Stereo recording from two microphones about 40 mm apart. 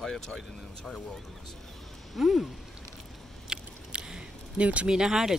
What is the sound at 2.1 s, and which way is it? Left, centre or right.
Speech, centre.